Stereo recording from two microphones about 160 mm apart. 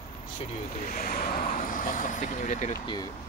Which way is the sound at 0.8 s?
65° left (ahead or behind).